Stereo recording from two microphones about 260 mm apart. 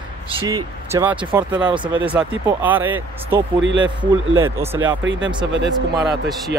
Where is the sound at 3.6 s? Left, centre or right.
Right.